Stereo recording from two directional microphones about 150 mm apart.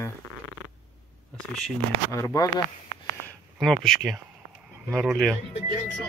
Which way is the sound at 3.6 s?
Centre (ahead or behind).